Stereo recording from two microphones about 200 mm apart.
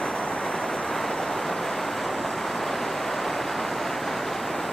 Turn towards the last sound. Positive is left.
turn(degrees=0)  # may be behind; listen again after turning